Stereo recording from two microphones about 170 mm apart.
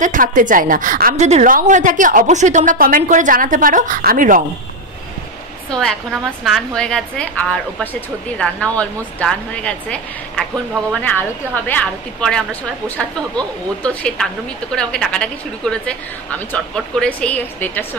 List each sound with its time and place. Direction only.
0.0 s a woman's voice: 50° right (ahead or behind)
1.1 s a woman's voice: 40° right (ahead or behind)
5.7 s a woman's voice: 5° left (ahead or behind)